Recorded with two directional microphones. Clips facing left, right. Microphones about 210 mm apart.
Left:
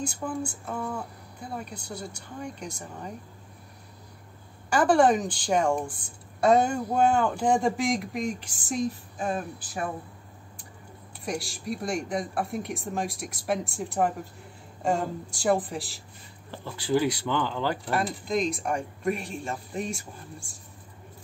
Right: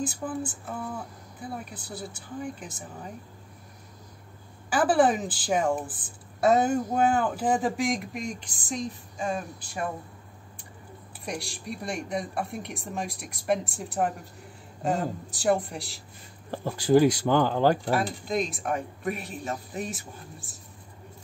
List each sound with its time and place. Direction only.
0.0 s a woman's voice: 5° right (ahead or behind)
1.6 s a woman's voice: 5° right (ahead or behind)
4.6 s a woman's voice: 5° right (ahead or behind)
11.2 s a woman's voice: centre (ahead or behind)
16.4 s speech: 45° right (ahead or behind)
17.9 s a woman's voice: centre (ahead or behind)